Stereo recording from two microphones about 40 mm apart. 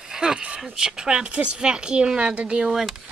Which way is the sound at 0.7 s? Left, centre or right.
Centre.